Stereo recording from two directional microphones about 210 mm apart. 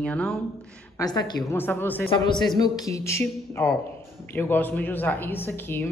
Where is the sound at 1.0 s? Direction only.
20° left (ahead or behind).